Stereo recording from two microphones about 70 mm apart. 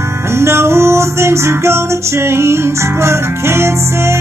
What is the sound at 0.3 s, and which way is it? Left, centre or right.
Music, right.